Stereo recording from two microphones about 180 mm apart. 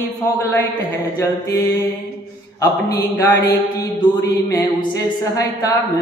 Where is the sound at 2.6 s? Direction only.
20° left (ahead or behind).